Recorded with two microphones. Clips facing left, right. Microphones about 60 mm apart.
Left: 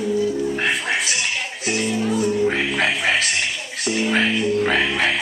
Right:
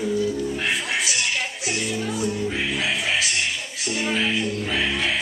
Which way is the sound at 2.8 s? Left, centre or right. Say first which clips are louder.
Left 4 dB; left.